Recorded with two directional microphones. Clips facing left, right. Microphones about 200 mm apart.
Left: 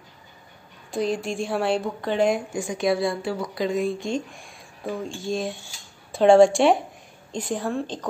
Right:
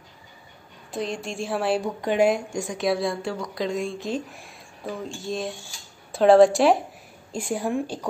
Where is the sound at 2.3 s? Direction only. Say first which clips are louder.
Even; centre (ahead or behind).